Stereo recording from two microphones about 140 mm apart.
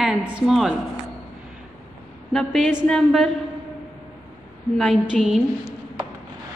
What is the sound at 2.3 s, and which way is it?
A woman's voice, centre (ahead or behind).